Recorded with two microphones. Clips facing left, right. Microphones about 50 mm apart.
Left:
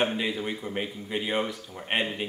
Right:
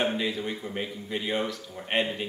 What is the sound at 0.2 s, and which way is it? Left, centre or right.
A man's voice, centre.